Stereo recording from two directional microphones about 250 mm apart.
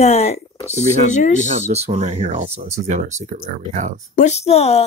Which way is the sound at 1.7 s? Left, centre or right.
Right.